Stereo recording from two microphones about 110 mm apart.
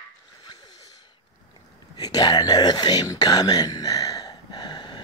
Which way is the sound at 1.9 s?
35° left (ahead or behind).